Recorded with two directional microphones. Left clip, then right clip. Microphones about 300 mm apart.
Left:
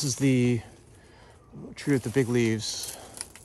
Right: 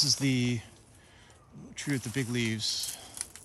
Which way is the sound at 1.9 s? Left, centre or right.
Centre.